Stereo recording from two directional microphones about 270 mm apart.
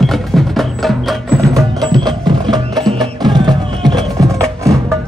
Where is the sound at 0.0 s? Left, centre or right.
Centre.